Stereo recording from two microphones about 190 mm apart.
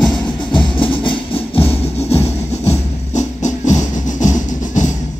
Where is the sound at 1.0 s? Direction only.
30° left (ahead or behind).